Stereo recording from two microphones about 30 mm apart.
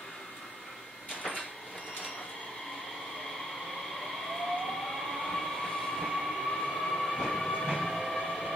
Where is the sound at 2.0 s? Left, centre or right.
Left.